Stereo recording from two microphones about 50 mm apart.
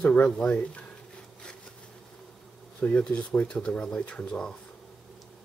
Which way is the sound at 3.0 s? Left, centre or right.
Centre.